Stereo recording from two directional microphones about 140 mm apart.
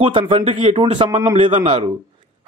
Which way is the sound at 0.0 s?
40° right (ahead or behind).